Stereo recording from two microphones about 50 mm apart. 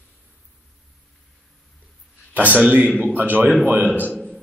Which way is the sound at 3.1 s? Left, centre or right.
Right.